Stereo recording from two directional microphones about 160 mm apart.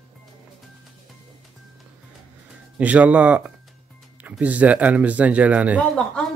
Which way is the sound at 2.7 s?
10° right (ahead or behind).